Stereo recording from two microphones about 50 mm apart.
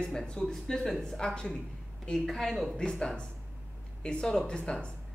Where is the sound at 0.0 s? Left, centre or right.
Centre.